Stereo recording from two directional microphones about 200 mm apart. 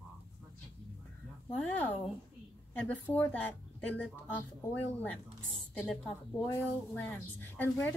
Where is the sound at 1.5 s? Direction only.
10° left (ahead or behind).